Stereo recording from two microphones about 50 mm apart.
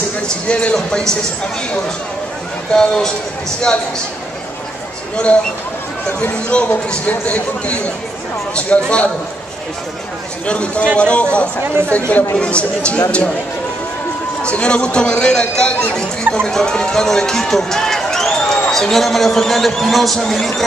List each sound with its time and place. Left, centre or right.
0.5 s speech: left
6.3 s speech: centre
10.4 s speech: left
14.4 s speech: left; by 20.6 s centre